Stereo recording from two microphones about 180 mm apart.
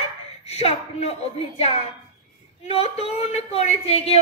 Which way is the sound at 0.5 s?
35° left (ahead or behind).